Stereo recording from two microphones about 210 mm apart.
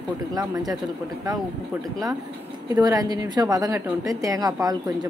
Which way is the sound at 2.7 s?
15° right (ahead or behind).